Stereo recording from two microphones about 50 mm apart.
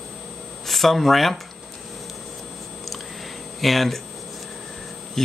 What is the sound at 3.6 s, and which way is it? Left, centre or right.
Speech, centre.